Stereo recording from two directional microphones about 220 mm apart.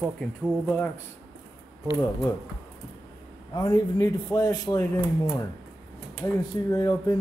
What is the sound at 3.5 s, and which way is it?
Speech, 15° left (ahead or behind).